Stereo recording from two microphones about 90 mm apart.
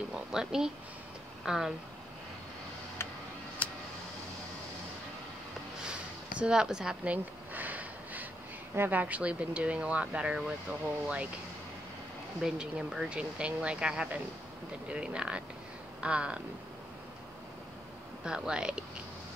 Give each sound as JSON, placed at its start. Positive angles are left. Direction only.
{"t": 0.1, "sound": "speech", "side_deg": -5}
{"t": 5.9, "sound": "a sound", "side_deg": -10}
{"t": 7.5, "sound": "sniff", "side_deg": -20}
{"t": 8.7, "sound": "speech", "side_deg": -20}
{"t": 12.4, "sound": "speech", "side_deg": -5}
{"t": 18.2, "sound": "speech", "side_deg": -10}